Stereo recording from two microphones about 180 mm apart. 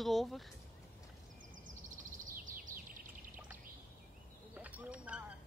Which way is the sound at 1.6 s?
45° right (ahead or behind).